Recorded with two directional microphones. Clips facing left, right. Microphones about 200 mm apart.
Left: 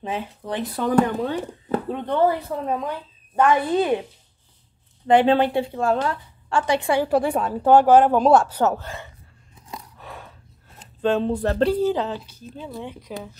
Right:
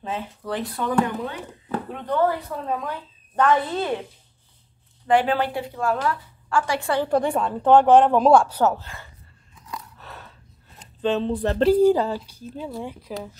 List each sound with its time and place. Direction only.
0.0 s a woman's voice: 15° left (ahead or behind)
0.9 s speech: 40° left (ahead or behind)
2.0 s a woman's voice: 25° left (ahead or behind)
5.0 s a woman's voice: 25° left (ahead or behind); by 8.5 s centre (ahead or behind)
8.5 s speech: 55° left (ahead or behind)
9.6 s a sound: 25° left (ahead or behind)
9.9 s a sound: 10° left (ahead or behind)
10.8 s speech: 10° left (ahead or behind)
11.8 s speech: 10° right (ahead or behind)